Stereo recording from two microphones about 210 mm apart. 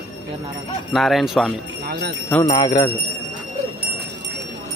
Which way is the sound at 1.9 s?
50° right (ahead or behind).